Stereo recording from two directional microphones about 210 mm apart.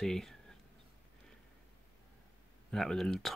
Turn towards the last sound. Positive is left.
turn(degrees=0)  # may be behind; listen again after turning